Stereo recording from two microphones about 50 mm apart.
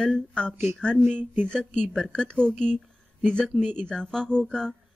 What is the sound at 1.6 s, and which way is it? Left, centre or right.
Speech, centre.